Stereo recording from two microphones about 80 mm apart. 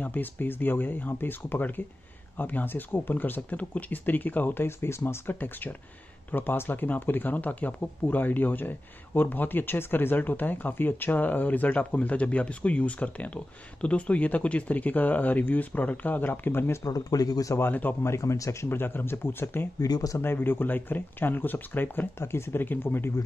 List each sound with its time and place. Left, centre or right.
0.0 s speech: left
16.8 s speech: left
17.6 s speech: left
18.0 s speech: left
19.8 s speech: left
20.2 s speech: left